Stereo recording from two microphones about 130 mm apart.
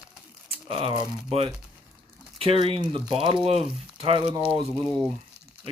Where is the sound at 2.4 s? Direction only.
45° right (ahead or behind).